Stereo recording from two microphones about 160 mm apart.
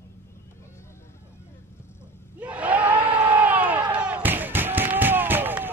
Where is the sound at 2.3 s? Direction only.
10° right (ahead or behind).